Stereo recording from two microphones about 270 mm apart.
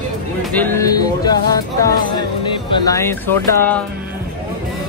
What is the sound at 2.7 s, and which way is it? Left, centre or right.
Speech, centre.